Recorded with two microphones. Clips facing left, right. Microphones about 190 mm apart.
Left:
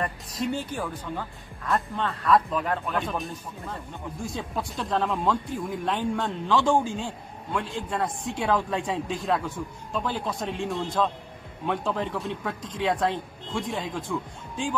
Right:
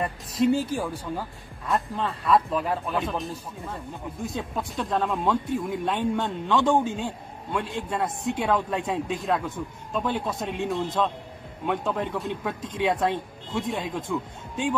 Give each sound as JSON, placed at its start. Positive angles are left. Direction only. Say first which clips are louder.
{"t": 0.0, "sound": "speech", "louder": "right 6 dB", "side_deg": -5}